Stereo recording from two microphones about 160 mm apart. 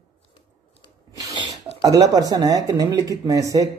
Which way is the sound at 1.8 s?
20° right (ahead or behind).